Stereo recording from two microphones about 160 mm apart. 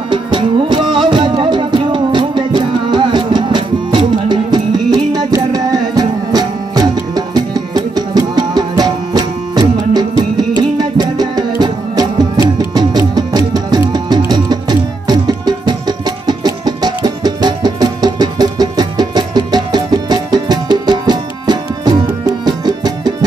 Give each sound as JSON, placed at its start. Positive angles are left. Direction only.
{"t": 0.1, "sound": "music", "side_deg": -30}